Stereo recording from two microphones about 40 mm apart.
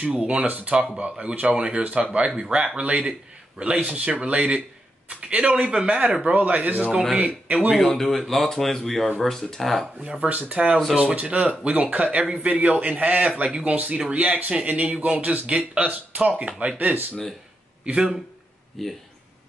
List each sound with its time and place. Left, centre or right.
0.1 s a man's voice: right
5.7 s a man's voice: right
7.8 s speech: centre
10.0 s a man's voice: right
14.7 s speech: right
16.6 s a man's voice: right
17.9 s speech: right
18.8 s speech: centre